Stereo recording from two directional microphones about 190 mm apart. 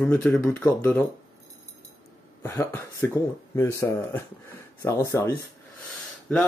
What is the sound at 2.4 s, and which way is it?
Speech, 10° left (ahead or behind).